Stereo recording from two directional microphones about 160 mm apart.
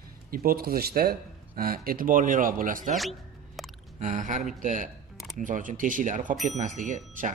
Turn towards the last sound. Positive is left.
turn(degrees=-50)  # may be behind; listen again after turning